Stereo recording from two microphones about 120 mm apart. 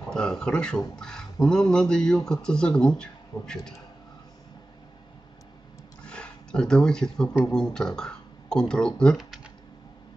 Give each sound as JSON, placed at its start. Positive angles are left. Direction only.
{"t": 0.1, "sound": "speech", "side_deg": 5}
{"t": 6.0, "sound": "a sound", "side_deg": 5}
{"t": 7.4, "sound": "speech", "side_deg": 5}